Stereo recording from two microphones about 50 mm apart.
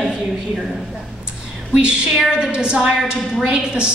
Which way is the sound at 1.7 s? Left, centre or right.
Centre.